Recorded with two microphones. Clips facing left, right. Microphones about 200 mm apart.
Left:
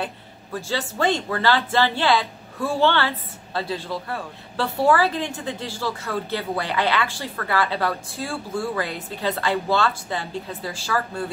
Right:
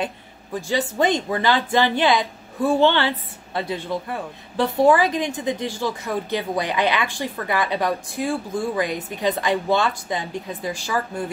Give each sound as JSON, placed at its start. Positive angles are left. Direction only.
{"t": 0.0, "sound": "speech", "side_deg": -15}